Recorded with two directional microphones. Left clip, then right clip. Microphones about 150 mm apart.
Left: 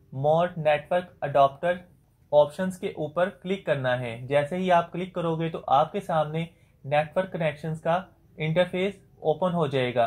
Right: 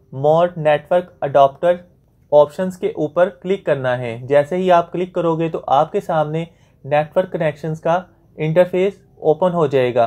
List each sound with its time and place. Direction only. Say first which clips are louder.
0.1 s speech: right 9 dB; 30° right (ahead or behind)